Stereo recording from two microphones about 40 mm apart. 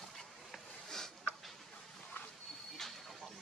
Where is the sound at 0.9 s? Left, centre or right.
Centre.